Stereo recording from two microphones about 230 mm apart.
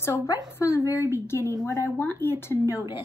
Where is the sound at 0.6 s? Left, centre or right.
Centre.